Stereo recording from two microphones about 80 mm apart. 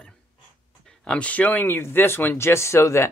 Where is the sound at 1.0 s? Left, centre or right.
Centre.